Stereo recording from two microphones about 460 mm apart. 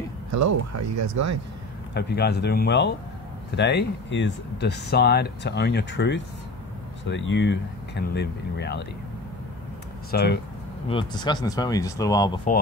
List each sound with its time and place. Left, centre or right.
0.3 s speech: right
2.0 s speech: left
10.1 s speech: left
10.9 s speech: centre